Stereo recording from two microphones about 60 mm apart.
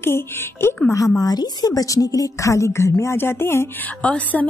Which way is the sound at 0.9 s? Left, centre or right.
Left.